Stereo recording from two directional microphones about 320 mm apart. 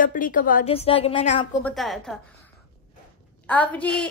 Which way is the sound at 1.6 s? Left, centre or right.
Centre.